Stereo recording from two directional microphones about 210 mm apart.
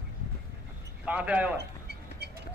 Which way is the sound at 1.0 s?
5° right (ahead or behind).